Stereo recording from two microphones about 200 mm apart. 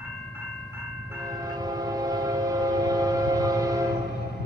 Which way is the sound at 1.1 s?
20° right (ahead or behind).